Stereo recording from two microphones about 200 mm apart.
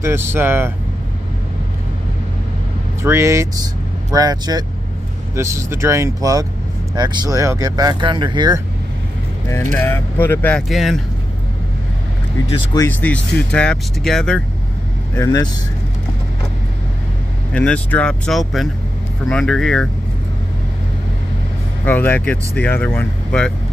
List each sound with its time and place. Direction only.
0.0 s speech: 10° right (ahead or behind)
3.0 s speech: 15° right (ahead or behind)
9.5 s speech: 10° left (ahead or behind)
12.4 s speech: 15° left (ahead or behind)
13.0 s speech: 5° left (ahead or behind)
15.1 s speech: 15° left (ahead or behind)
17.5 s speech: 5° left (ahead or behind)
21.8 s speech: 10° left (ahead or behind)